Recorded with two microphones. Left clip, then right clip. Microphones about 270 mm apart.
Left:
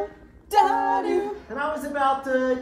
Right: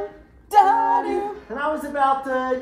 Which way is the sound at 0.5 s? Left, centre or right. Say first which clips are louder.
Right 4 dB; centre.